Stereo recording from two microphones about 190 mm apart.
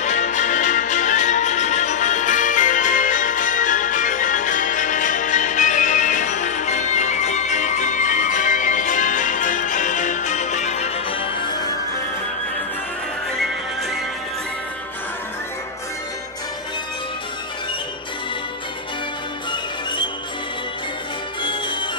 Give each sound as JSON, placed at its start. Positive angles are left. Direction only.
{"t": 0.0, "sound": "music", "side_deg": 40}
{"t": 19.5, "sound": "music", "side_deg": 25}
{"t": 21.4, "sound": "music", "side_deg": 25}